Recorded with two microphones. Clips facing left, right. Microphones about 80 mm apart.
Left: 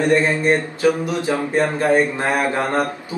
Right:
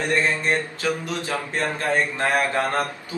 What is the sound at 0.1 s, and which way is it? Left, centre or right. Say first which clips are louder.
A man's voice: left 3 dB; left.